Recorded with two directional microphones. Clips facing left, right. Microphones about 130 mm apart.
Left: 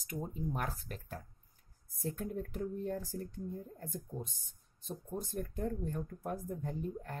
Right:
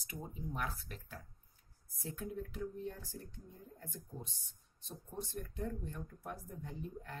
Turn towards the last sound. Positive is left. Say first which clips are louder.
# left 6 dB
turn(degrees=45)  # may be behind; listen again after turning